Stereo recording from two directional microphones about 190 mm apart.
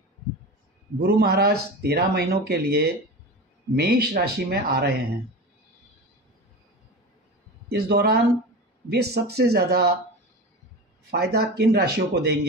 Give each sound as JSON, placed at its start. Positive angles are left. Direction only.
{"t": 1.0, "sound": "speech", "side_deg": -55}
{"t": 7.7, "sound": "speech", "side_deg": -55}
{"t": 11.1, "sound": "speech", "side_deg": -55}